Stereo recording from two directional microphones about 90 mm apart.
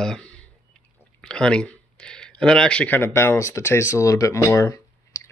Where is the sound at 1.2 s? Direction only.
10° left (ahead or behind).